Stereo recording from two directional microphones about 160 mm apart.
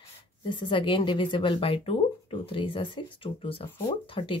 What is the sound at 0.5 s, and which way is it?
A woman's voice, 30° left (ahead or behind).